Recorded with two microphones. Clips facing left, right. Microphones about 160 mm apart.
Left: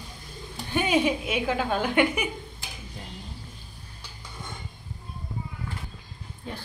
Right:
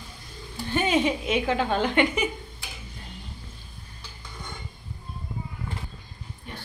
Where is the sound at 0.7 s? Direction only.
10° left (ahead or behind).